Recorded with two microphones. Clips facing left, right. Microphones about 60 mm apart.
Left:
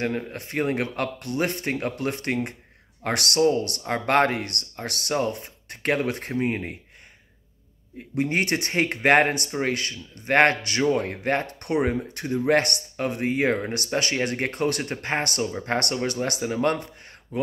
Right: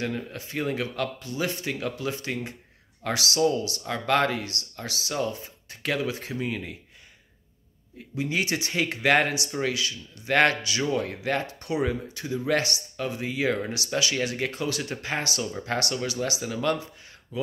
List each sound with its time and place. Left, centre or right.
0.0 s speech: left
8.1 s speech: left